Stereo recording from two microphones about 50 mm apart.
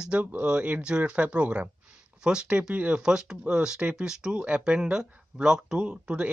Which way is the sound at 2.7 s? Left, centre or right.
Right.